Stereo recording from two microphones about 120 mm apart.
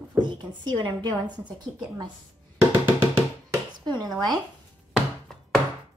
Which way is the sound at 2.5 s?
20° right (ahead or behind).